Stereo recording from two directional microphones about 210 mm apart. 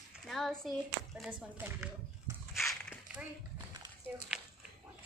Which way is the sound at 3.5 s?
20° right (ahead or behind).